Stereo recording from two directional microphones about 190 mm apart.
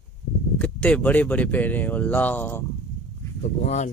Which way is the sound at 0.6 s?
5° left (ahead or behind).